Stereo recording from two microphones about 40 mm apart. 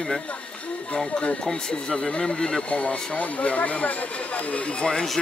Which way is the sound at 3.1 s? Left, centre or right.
Left.